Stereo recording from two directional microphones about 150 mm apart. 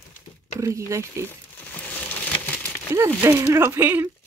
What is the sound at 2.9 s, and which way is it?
Speech, 20° right (ahead or behind).